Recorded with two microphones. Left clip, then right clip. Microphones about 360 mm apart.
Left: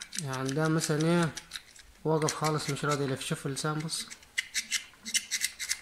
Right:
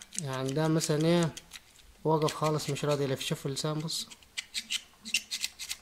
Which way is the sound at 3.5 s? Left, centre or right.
Centre.